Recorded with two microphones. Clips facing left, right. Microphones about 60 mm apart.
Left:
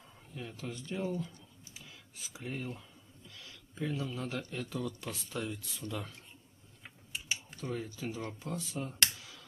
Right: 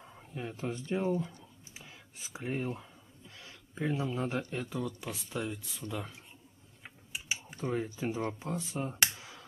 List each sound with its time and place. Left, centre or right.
0.0 s speech: right
6.8 s typing: centre
7.6 s speech: right
9.2 s a sound: right